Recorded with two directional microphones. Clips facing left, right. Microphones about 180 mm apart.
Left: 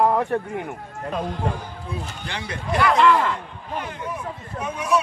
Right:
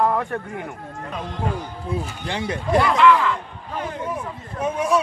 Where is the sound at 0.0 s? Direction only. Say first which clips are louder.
Left 2 dB; 15° left (ahead or behind).